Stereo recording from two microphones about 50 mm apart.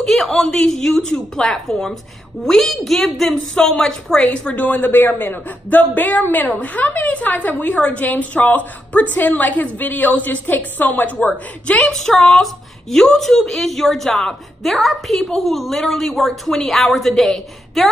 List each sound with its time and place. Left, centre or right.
0.0 s a woman's voice: centre
4.6 s a woman's voice: left
11.9 s a woman's voice: centre